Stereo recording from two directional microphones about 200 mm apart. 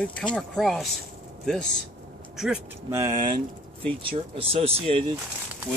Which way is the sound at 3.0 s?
30° right (ahead or behind).